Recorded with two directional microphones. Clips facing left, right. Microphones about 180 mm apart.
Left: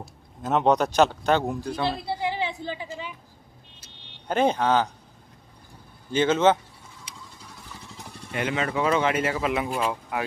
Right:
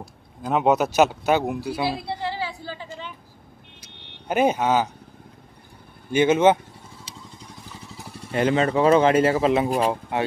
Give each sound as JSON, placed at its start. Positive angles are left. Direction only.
{"t": 0.4, "sound": "speech", "side_deg": 0}
{"t": 2.2, "sound": "a sound", "side_deg": 20}
{"t": 2.9, "sound": "vehicle", "side_deg": 5}
{"t": 4.3, "sound": "speech", "side_deg": -10}
{"t": 6.1, "sound": "speech", "side_deg": -10}
{"t": 8.3, "sound": "speech", "side_deg": -30}